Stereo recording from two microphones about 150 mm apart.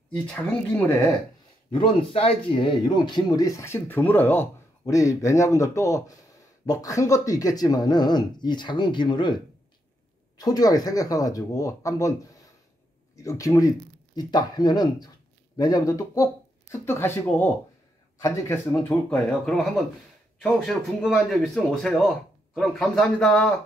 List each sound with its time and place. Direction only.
0.7 s speech: 15° left (ahead or behind)
2.0 s speech: 35° left (ahead or behind); by 18.8 s 20° left (ahead or behind)
18.9 s a man's voice: 5° left (ahead or behind)